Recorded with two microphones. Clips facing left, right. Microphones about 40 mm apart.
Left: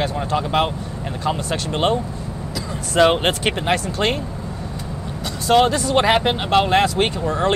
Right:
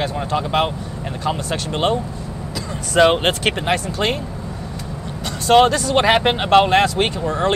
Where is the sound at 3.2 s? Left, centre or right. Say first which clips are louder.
Right 1 dB; right.